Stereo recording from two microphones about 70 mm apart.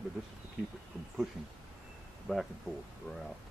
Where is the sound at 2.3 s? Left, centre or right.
Centre.